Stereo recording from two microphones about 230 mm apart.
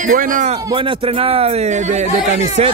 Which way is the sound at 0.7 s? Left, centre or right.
Right.